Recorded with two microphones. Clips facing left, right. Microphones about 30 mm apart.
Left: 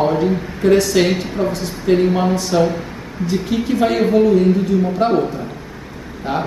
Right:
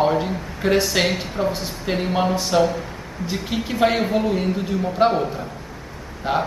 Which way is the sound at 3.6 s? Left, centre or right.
Centre.